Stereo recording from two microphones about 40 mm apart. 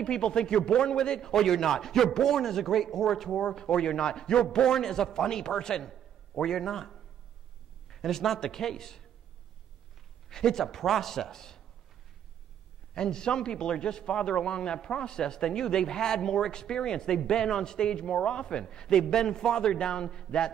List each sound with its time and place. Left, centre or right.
0.0 s a man's voice: centre
3.3 s a man's voice: centre
10.3 s a man's voice: centre
12.9 s a man's voice: centre